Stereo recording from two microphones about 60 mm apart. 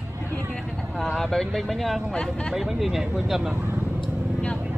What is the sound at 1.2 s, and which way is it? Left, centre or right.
Speech, centre.